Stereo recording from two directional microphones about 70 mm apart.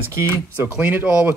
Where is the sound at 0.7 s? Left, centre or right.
Right.